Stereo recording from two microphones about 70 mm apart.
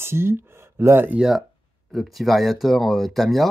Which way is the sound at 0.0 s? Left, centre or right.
Right.